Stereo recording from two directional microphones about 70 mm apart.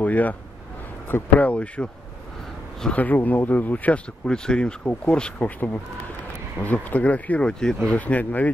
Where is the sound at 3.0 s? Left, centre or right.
Left.